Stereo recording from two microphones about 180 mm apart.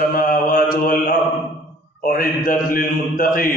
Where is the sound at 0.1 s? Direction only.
50° left (ahead or behind).